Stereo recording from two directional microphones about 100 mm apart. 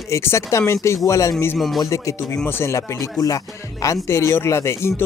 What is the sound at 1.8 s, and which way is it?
Speech, 30° left (ahead or behind).